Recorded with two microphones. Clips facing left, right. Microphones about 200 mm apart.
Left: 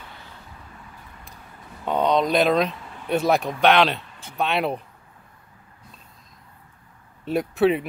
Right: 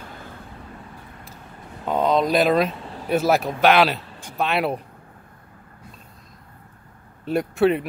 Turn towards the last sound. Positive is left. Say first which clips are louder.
# right 1 dB
turn(degrees=0)  # may be behind; listen again after turning